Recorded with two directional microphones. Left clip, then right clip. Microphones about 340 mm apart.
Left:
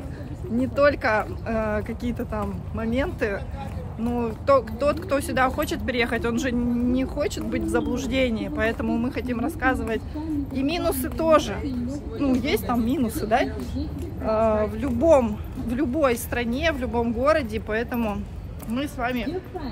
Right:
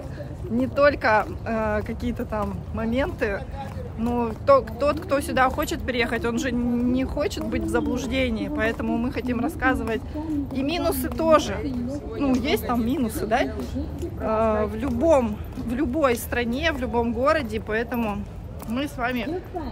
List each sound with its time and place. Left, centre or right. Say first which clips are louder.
0.6 s speech: right 1 dB; centre